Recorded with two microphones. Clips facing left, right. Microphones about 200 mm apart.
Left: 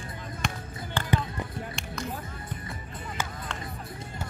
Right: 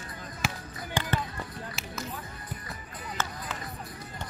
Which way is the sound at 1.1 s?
20° left (ahead or behind).